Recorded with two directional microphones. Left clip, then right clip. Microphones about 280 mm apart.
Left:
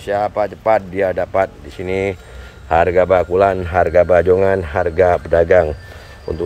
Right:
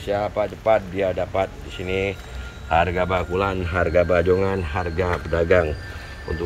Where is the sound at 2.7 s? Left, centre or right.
Centre.